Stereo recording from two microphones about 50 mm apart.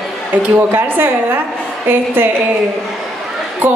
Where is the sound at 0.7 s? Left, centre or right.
Right.